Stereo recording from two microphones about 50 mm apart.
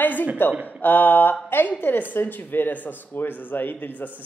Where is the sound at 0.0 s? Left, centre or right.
Left.